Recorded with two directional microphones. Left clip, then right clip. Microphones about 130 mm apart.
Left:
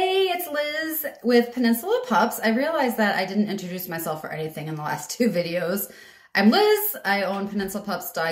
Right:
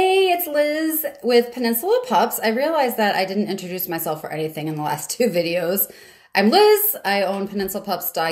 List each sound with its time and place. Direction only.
0.0 s a woman's voice: 25° right (ahead or behind)